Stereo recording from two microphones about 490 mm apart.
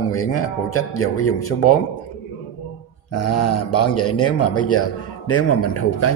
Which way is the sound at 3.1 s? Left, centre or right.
Left.